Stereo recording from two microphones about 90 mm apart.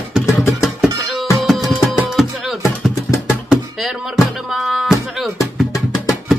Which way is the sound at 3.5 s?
Centre (ahead or behind).